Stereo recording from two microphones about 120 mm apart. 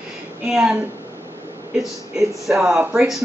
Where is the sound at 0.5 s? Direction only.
5° right (ahead or behind).